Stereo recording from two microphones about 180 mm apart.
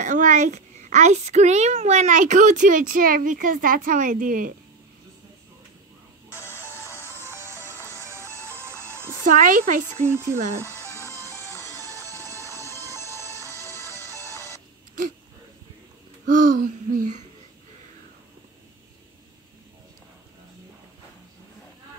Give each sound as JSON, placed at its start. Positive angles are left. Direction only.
{"t": 0.0, "sound": "a woman's voice", "side_deg": -40}
{"t": 6.4, "sound": "music", "side_deg": 15}
{"t": 7.2, "sound": "music", "side_deg": -15}
{"t": 9.2, "sound": "a woman's voice", "side_deg": -50}
{"t": 10.0, "sound": "speech", "side_deg": -15}
{"t": 10.6, "sound": "music", "side_deg": -15}
{"t": 11.2, "sound": "music", "side_deg": 15}
{"t": 13.3, "sound": "music", "side_deg": -15}
{"t": 13.7, "sound": "music", "side_deg": 15}
{"t": 16.3, "sound": "a woman's voice", "side_deg": -50}